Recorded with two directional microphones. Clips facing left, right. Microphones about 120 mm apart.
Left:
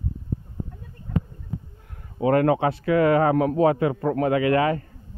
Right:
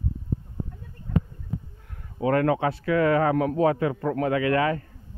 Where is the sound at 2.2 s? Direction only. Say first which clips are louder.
Left 3 dB; 20° left (ahead or behind).